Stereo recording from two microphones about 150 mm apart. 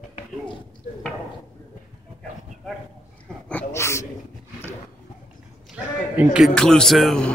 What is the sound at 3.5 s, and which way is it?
Speech, 15° left (ahead or behind).